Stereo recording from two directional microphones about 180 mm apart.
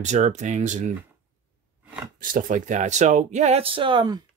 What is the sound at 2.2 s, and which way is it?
Speech, 50° right (ahead or behind).